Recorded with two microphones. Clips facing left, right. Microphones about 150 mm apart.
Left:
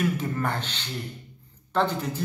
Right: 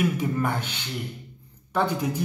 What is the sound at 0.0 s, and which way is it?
A man's voice, 10° right (ahead or behind).